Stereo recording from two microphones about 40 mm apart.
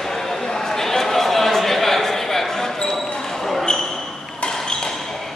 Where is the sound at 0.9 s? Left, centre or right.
Centre.